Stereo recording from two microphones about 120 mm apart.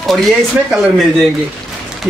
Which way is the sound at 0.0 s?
Centre (ahead or behind).